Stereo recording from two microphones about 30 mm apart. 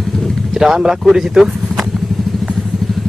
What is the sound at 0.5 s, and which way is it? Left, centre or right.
Speech, centre.